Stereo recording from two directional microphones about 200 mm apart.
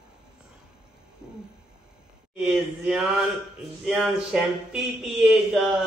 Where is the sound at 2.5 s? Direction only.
Centre (ahead or behind).